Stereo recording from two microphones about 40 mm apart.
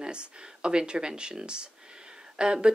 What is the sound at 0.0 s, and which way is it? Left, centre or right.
Speech, right.